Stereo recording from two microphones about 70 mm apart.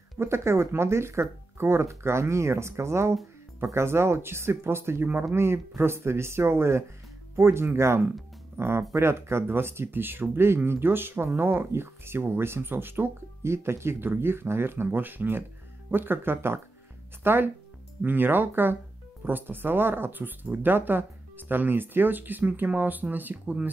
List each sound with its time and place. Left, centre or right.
0.2 s speech: right